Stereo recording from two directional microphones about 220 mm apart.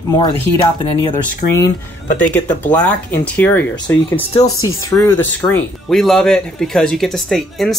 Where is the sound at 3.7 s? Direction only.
20° left (ahead or behind).